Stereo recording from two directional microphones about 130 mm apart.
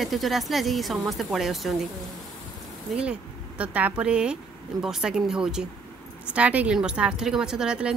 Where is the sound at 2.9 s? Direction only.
Centre (ahead or behind).